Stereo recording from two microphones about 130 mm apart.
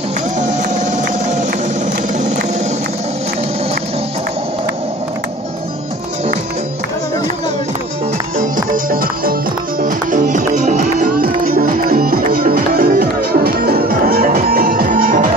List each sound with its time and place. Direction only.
0.4 s music: 70° right (ahead or behind)
8.7 s music: 90° right
14.2 s music: 90° right